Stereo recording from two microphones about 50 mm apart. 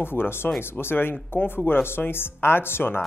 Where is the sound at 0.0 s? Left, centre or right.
Left.